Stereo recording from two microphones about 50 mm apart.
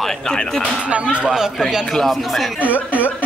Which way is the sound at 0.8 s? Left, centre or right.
Right.